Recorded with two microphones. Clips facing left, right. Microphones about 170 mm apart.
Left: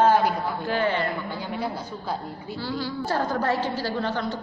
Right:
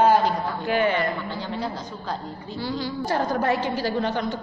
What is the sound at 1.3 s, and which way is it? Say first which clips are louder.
A woman's voice: even; 10° left (ahead or behind).